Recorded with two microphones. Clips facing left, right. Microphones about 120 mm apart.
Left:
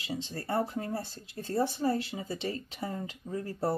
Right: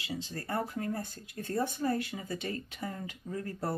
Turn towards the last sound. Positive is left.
turn(degrees=30)  # may be behind; listen again after turning